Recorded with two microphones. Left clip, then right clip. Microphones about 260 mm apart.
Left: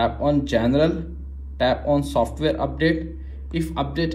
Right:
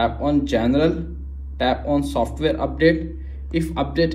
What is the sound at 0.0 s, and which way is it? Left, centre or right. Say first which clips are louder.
A man's voice: right 1 dB; left.